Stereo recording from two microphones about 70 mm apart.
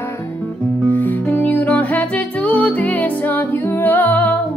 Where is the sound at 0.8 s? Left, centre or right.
Left.